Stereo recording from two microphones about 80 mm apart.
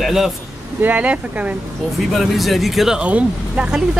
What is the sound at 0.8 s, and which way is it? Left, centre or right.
Speech, centre.